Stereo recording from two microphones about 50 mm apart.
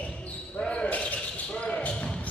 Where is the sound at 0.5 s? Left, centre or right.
Left.